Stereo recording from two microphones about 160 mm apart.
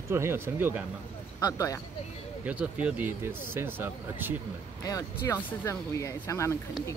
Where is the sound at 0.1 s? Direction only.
15° right (ahead or behind).